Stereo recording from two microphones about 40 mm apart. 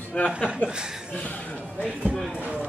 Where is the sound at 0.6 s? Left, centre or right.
Left.